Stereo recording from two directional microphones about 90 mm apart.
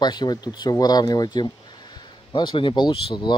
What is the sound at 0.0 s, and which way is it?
Speech, 50° left (ahead or behind).